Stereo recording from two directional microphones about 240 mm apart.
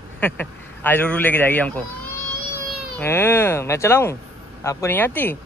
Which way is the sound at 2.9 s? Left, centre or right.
Centre.